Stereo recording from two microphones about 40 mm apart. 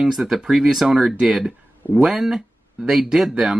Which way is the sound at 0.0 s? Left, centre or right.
Centre.